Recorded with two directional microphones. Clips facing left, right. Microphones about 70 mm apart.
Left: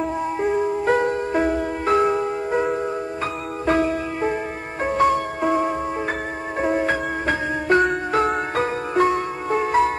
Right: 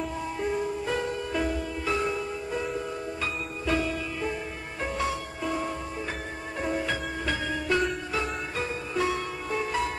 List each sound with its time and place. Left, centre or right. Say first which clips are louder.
0.0 s music: left 8 dB; left